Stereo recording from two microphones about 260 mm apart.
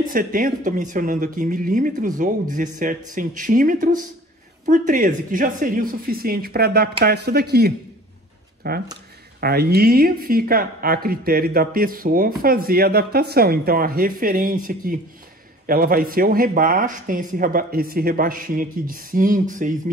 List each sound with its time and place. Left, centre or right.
0.1 s a woman's voice: right